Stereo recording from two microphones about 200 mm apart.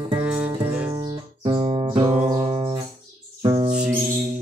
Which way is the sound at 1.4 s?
25° right (ahead or behind).